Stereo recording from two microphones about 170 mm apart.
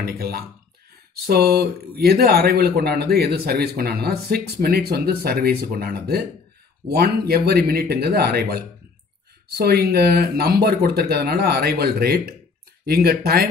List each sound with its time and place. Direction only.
0.0 s a man's voice: 65° right (ahead or behind)